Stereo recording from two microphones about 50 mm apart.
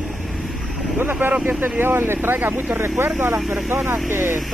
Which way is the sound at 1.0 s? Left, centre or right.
Right.